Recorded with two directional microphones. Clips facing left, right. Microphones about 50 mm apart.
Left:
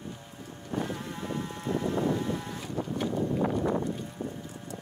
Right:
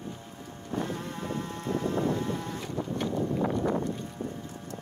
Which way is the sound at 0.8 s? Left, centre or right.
Centre.